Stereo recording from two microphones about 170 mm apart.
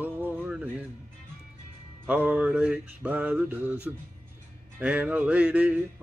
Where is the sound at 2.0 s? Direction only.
10° right (ahead or behind).